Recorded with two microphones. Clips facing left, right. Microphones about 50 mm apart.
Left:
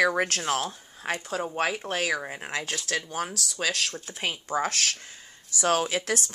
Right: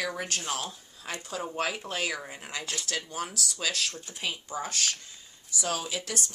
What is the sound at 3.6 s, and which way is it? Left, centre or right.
Speech, left.